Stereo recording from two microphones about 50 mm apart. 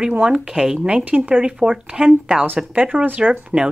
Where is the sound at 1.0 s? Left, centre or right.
Right.